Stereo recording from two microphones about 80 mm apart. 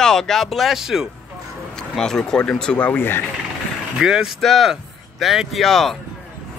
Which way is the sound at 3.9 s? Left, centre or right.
Centre.